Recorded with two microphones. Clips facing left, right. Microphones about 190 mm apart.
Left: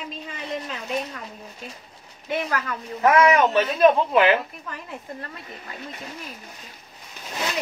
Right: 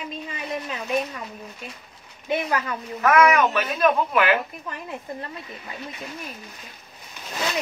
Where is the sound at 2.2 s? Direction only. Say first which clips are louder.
Right 2 dB; 15° right (ahead or behind).